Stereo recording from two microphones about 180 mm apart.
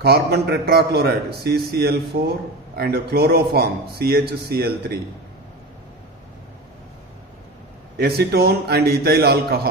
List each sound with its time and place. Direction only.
0.0 s a man's voice: 60° right (ahead or behind)
8.0 s a man's voice: 60° right (ahead or behind)